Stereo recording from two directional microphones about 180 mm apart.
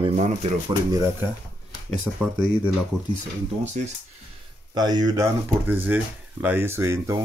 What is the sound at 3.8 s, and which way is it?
Speech, 40° right (ahead or behind).